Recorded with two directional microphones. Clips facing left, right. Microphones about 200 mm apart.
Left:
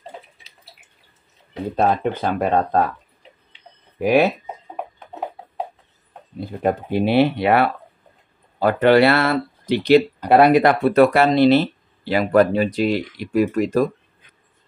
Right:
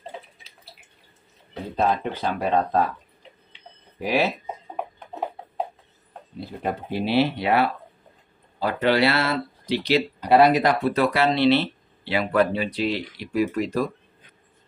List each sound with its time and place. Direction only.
1.8 s speech: 55° left (ahead or behind)
4.0 s speech: 55° left (ahead or behind)
6.4 s speech: 50° left (ahead or behind)